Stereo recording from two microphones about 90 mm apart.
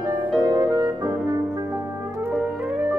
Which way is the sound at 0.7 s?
45° right (ahead or behind).